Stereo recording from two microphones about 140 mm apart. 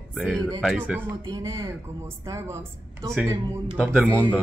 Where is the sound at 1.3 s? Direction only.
25° right (ahead or behind).